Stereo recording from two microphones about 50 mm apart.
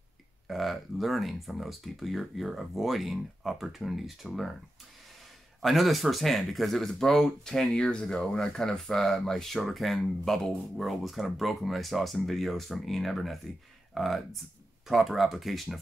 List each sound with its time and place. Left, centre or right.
0.5 s speech: centre
5.6 s speech: centre